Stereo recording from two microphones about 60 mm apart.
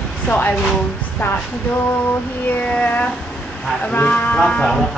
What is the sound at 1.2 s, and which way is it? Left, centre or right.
Speech, left.